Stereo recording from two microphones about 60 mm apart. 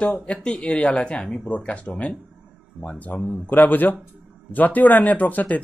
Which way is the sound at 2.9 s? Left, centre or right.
Left.